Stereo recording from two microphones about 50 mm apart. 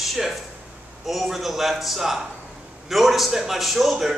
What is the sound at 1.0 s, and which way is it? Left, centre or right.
A man's voice, centre.